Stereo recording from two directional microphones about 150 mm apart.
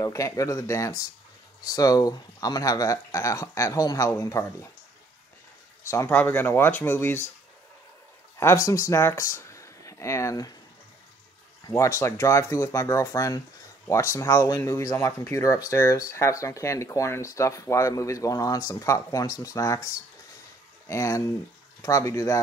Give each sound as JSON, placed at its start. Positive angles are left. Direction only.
{"t": 0.0, "sound": "speech", "side_deg": 20}
{"t": 5.9, "sound": "speech", "side_deg": 15}
{"t": 8.4, "sound": "speech", "side_deg": 20}
{"t": 11.6, "sound": "speech", "side_deg": 20}
{"t": 20.9, "sound": "speech", "side_deg": 20}